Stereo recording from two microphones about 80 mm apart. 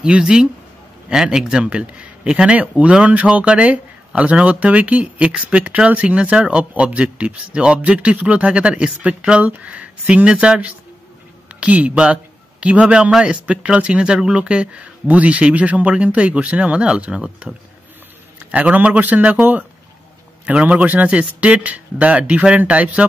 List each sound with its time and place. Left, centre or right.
0.0 s a man's voice: centre